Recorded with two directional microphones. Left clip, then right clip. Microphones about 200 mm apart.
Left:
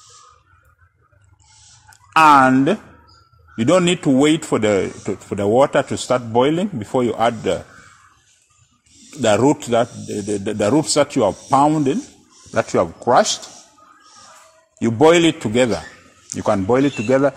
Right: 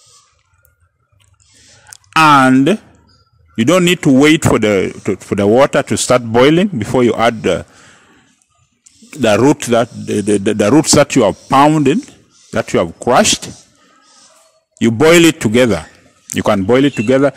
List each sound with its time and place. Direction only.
1.9 s a sound: 60° right (ahead or behind)
3.5 s a man's voice: 50° right (ahead or behind)
9.2 s a man's voice: 50° right (ahead or behind)
14.8 s a man's voice: 55° right (ahead or behind)